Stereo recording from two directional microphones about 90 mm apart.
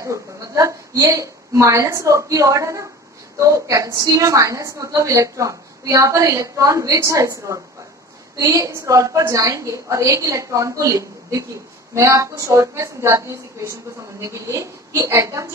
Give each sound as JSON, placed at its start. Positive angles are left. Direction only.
{"t": 0.0, "sound": "a woman's voice", "side_deg": -35}